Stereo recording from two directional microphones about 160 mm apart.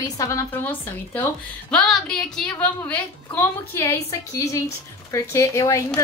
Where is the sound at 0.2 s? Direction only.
20° left (ahead or behind).